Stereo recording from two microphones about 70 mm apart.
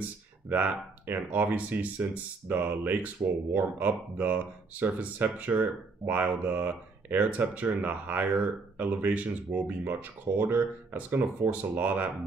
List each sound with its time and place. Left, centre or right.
0.5 s speech: right